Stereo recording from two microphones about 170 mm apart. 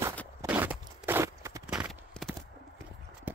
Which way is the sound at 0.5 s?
10° right (ahead or behind).